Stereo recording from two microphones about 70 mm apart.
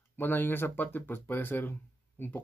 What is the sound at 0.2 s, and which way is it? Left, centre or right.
Speech, left.